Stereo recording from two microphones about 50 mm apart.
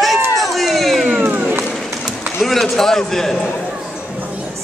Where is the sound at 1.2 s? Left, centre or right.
Right.